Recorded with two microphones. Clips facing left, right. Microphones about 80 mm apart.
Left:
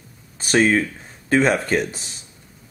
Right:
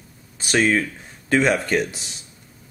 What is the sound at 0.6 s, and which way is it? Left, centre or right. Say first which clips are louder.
Speech: left 2 dB; centre.